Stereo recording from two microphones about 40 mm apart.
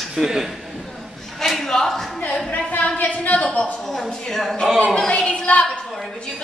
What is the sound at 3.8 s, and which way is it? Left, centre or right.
Speech, centre.